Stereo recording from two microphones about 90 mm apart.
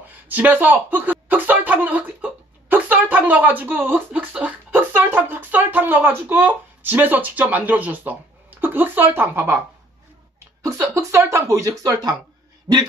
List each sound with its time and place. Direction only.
0.1 s speech: 20° right (ahead or behind)
10.6 s speech: 35° right (ahead or behind)
12.7 s dog: 10° right (ahead or behind)